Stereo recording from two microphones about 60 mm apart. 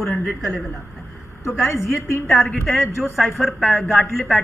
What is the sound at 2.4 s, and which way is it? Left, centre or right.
A man's voice, centre.